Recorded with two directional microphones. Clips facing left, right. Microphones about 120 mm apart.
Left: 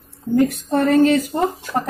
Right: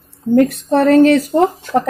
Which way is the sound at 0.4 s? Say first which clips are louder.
Right 4 dB; 90° right.